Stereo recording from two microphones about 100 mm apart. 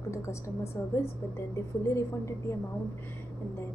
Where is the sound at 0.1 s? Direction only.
30° left (ahead or behind).